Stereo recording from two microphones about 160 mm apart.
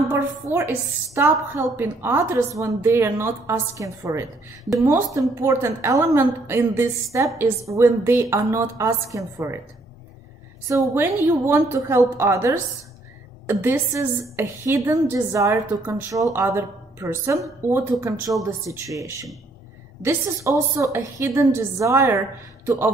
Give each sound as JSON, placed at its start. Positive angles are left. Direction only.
{"t": 0.1, "sound": "a woman's voice", "side_deg": -15}
{"t": 10.7, "sound": "a woman's voice", "side_deg": -20}